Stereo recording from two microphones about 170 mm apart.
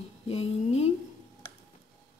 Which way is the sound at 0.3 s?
35° left (ahead or behind).